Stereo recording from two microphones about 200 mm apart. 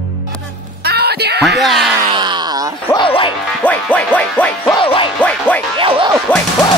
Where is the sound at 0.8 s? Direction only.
55° right (ahead or behind).